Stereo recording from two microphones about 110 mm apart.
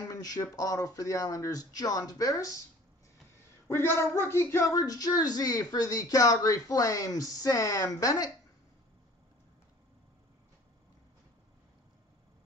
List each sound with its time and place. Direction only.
0.1 s speech: 35° left (ahead or behind)
3.6 s speech: 25° left (ahead or behind)